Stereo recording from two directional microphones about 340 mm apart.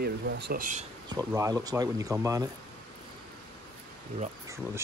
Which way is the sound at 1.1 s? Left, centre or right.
Centre.